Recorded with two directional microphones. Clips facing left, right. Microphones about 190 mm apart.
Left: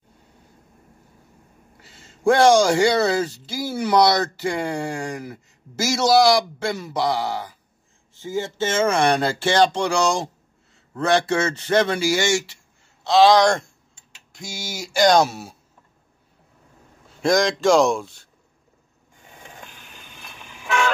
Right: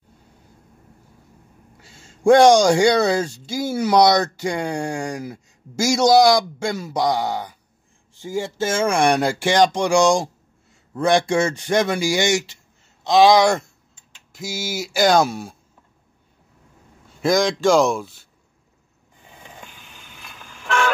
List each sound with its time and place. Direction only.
1.8 s speech: 15° right (ahead or behind); by 15.5 s centre (ahead or behind)
17.2 s speech: centre (ahead or behind)
20.0 s train: 5° left (ahead or behind)